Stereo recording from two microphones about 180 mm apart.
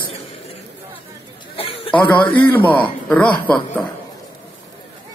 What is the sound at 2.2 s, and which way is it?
Speech, 25° left (ahead or behind).